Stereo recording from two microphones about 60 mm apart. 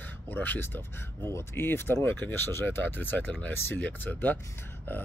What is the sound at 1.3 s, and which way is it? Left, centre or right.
Speech, left.